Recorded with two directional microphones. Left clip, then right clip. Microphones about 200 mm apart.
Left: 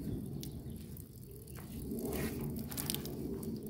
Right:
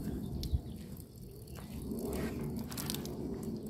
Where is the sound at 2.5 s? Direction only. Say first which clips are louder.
Right 1 dB; 20° left (ahead or behind).